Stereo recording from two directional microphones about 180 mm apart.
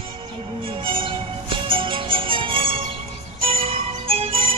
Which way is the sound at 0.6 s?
30° right (ahead or behind).